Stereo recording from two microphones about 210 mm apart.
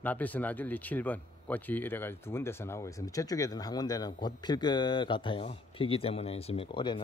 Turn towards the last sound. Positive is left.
turn(degrees=25)  # may be behind; listen again after turning